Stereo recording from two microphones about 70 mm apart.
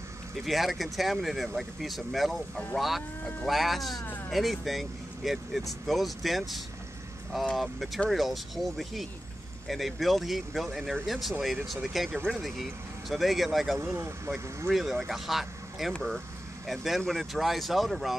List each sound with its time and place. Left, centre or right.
0.4 s speech: centre
13.9 s speech: right
14.7 s speech: centre